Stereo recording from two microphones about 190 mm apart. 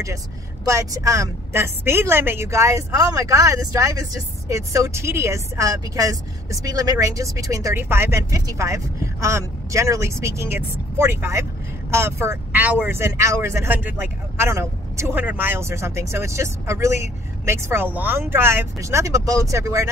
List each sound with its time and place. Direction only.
0.7 s speech: 15° right (ahead or behind)